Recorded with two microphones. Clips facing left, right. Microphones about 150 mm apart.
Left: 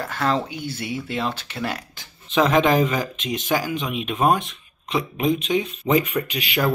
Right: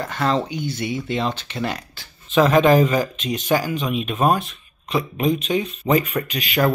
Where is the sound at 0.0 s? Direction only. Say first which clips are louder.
Right 2 dB; 5° left (ahead or behind).